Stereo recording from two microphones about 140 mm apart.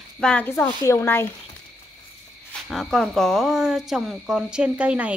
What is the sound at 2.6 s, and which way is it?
Speech, centre (ahead or behind).